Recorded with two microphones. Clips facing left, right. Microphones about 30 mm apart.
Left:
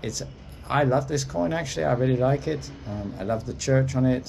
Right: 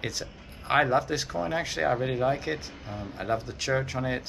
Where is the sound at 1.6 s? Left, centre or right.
Centre.